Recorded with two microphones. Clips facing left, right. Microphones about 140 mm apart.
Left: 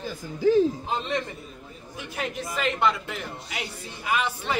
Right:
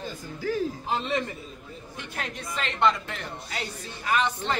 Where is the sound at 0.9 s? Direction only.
Centre (ahead or behind).